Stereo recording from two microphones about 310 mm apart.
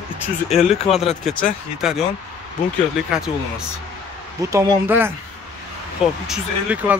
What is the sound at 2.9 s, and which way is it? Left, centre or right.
Speech, centre.